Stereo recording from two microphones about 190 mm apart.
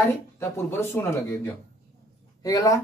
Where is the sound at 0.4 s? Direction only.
15° left (ahead or behind).